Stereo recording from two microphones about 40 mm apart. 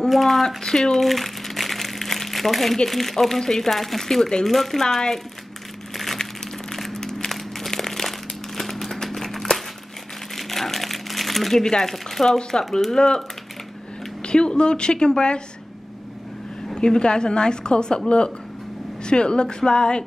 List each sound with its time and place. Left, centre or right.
0.1 s speech: centre
0.6 s speech: centre
0.9 s speech: centre
5.9 s crumpling: centre
6.7 s a sound: centre
7.3 s crumpling: centre
11.6 s speech: centre
12.4 s speech: centre
14.2 s speech: left
16.7 s speech: left